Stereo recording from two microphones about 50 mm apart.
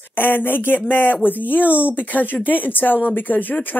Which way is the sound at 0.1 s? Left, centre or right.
Left.